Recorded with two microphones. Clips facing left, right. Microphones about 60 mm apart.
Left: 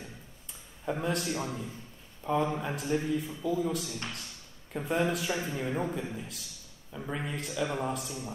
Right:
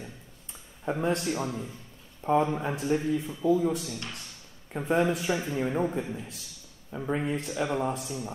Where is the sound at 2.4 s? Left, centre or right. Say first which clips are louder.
Right 3 dB; centre.